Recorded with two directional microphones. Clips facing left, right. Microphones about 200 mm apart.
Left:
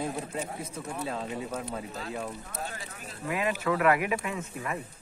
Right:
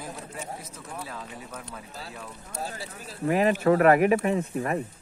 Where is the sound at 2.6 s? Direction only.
35° right (ahead or behind).